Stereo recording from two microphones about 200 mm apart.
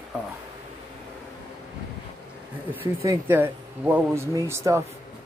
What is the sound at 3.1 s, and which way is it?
Speech, 10° right (ahead or behind).